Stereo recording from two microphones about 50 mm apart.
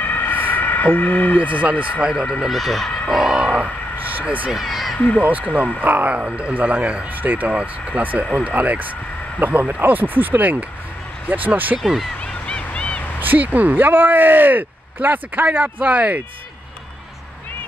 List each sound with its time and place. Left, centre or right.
0.2 s a sound: left
1.4 s a man's voice: right
2.4 s speech: centre
3.1 s a sound: centre
3.3 s vehicle: right
4.1 s speech: right
4.5 s speech: centre
4.9 s speech: left
5.2 s a man's voice: right
7.2 s speech: right
11.8 s speech: centre
12.4 s vehicle: left
13.2 s speech: right